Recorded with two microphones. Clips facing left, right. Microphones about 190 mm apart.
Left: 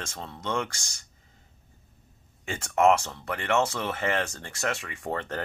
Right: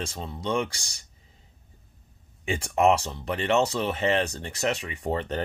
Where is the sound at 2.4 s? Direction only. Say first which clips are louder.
Even; 15° right (ahead or behind).